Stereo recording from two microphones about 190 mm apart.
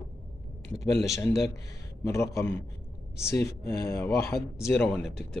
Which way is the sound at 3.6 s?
55° left (ahead or behind).